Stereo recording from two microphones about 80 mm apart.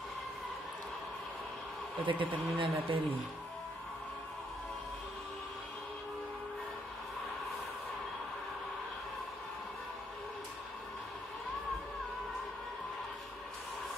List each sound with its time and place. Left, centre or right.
2.0 s speech: right